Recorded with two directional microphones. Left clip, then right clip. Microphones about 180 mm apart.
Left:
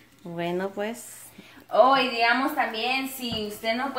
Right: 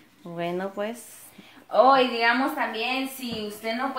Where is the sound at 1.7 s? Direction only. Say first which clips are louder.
Right 1 dB; 10° right (ahead or behind).